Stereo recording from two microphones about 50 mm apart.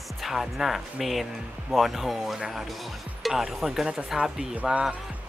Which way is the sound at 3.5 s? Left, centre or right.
Centre.